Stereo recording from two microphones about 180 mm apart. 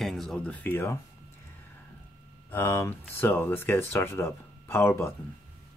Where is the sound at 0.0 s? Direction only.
Centre (ahead or behind).